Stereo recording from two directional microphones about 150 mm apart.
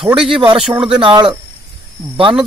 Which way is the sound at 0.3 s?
35° right (ahead or behind).